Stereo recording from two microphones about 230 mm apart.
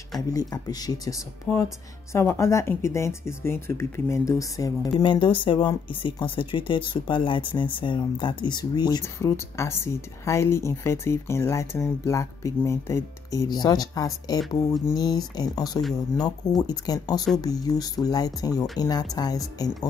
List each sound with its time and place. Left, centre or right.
0.3 s speech: centre